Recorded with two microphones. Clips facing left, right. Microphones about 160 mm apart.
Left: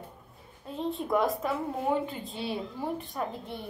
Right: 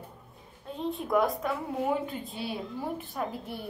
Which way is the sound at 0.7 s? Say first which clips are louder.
Left 1 dB; centre (ahead or behind).